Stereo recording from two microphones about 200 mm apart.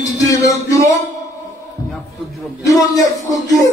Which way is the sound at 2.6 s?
15° left (ahead or behind).